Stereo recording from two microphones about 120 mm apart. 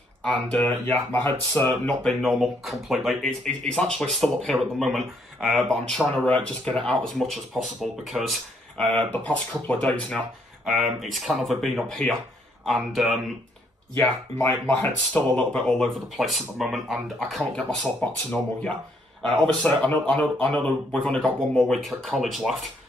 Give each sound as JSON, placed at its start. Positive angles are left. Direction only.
{"t": 0.2, "sound": "speech", "side_deg": 10}
{"t": 10.6, "sound": "speech", "side_deg": 0}
{"t": 13.9, "sound": "speech", "side_deg": 15}